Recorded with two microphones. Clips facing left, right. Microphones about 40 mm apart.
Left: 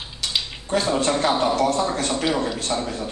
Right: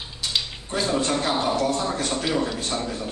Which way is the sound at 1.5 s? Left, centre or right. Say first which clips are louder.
Left 3 dB; left.